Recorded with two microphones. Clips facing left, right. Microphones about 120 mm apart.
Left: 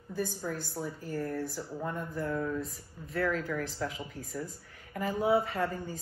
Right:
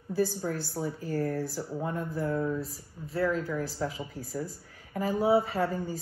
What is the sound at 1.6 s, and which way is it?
Speech, 10° right (ahead or behind).